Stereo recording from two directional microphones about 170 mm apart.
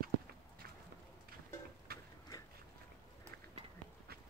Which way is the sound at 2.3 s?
20° left (ahead or behind).